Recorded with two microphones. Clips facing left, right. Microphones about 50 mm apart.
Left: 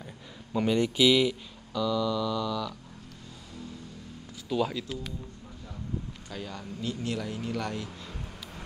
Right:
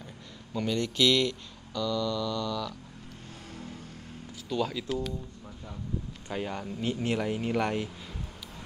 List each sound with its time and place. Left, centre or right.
0.0 s speech: centre
4.5 s speech: centre
6.3 s speech: right